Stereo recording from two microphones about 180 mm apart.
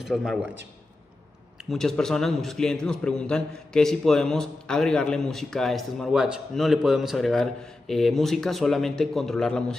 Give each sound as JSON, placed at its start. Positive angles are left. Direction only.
{"t": 0.0, "sound": "a man's voice", "side_deg": 0}
{"t": 1.7, "sound": "a man's voice", "side_deg": 0}